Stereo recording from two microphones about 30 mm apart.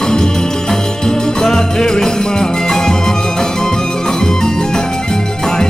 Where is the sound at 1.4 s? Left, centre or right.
Left.